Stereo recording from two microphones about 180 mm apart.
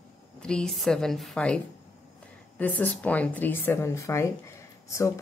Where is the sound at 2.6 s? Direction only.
10° left (ahead or behind).